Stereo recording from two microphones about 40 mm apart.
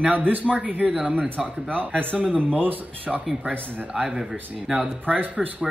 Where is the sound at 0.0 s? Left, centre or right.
Right.